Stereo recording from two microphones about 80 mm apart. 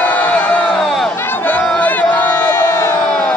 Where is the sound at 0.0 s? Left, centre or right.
Centre.